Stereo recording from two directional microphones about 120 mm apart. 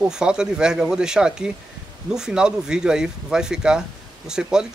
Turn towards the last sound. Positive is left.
turn(degrees=-5)  # may be behind; listen again after turning